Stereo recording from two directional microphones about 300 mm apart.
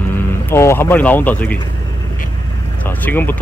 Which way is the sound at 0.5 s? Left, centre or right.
Centre.